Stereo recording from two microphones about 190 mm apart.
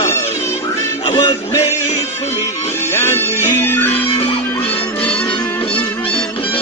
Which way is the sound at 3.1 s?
10° left (ahead or behind).